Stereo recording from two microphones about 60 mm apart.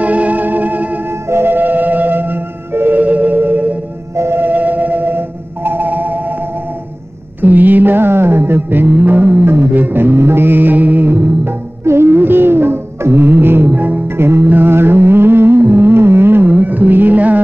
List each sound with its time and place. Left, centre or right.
0.0 s music: right
4.2 s music: right
4.5 s music: right
7.4 s a sound: right
9.0 s music: right
11.8 s music: right
14.1 s music: right